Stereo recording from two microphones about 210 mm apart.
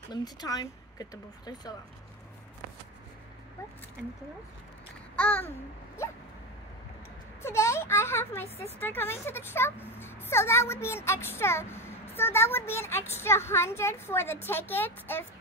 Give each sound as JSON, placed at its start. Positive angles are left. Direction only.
{"t": 0.1, "sound": "speech", "side_deg": 20}
{"t": 5.1, "sound": "babbling", "side_deg": 5}
{"t": 7.4, "sound": "speech", "side_deg": 15}